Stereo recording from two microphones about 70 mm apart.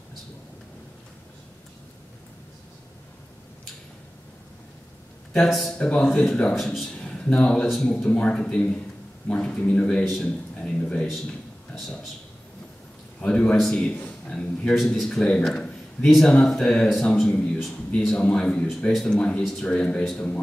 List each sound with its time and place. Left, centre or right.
5.4 s speech: centre
5.8 s speech: centre
6.9 s a sound: centre
7.6 s speech: centre
7.9 s speech: centre
13.2 s speech: centre
14.7 s a man's voice: centre